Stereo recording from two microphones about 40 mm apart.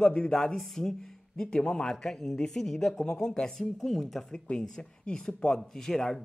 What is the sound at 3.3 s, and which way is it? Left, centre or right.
Speech, centre.